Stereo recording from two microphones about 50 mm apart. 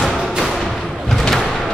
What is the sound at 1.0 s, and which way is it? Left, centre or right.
Thump, centre.